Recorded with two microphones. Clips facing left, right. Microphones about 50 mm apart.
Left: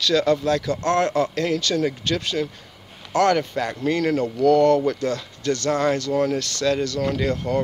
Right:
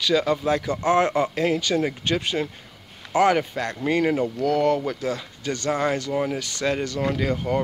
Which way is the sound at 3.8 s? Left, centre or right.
Centre.